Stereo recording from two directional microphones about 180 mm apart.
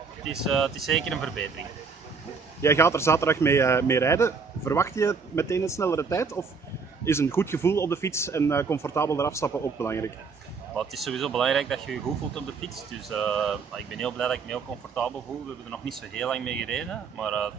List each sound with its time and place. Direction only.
0.5 s speech: centre (ahead or behind)
2.6 s a man's voice: 15° left (ahead or behind)
10.8 s speech: centre (ahead or behind)